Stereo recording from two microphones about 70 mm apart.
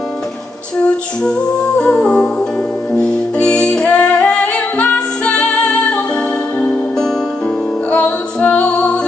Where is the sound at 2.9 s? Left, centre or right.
Centre.